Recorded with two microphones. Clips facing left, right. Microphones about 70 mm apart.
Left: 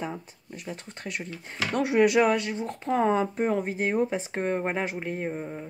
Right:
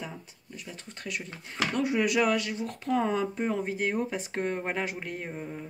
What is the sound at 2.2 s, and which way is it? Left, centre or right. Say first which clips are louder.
Speech: left 3 dB; left.